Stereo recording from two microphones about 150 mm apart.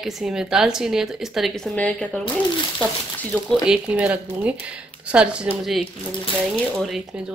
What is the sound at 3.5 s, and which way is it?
A woman's voice, 5° right (ahead or behind).